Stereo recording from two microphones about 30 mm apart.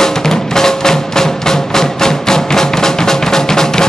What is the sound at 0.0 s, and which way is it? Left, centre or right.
Music, centre.